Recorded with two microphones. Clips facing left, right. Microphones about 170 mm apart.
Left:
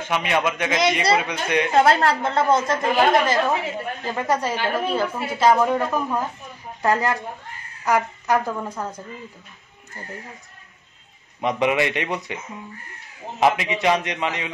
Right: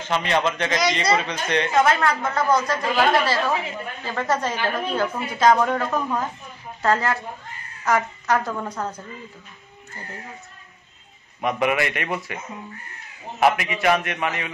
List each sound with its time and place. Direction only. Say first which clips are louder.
0.0 s a woman's voice: even; 10° left (ahead or behind)
1.7 s a woman's voice: left 3 dB; 35° left (ahead or behind); by 9.0 s 10° left (ahead or behind)
11.4 s a woman's voice: left 1 dB; 20° left (ahead or behind)
13.4 s a woman's voice: even; 20° left (ahead or behind)